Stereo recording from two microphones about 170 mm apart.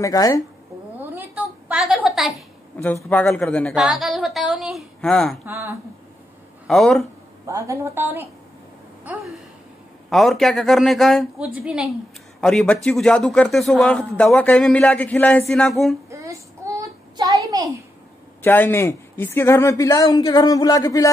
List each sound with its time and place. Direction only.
0.0 s speech: 20° left (ahead or behind)
0.9 s a sound: 10° right (ahead or behind)
2.8 s a woman's voice: 10° left (ahead or behind)
5.4 s a woman's voice: 15° right (ahead or behind)
6.7 s a man's voice: centre (ahead or behind)
7.4 s a woman's voice: 15° right (ahead or behind)
10.0 s a man's voice: centre (ahead or behind)
16.1 s child singing: 20° right (ahead or behind)
18.4 s a man's voice: 10° left (ahead or behind)